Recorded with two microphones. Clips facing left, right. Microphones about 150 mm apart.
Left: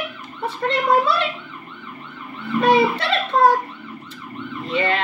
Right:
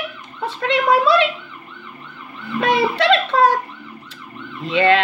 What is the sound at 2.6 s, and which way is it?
Speech, 90° right.